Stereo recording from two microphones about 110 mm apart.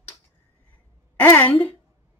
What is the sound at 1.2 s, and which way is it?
Speech, 15° left (ahead or behind).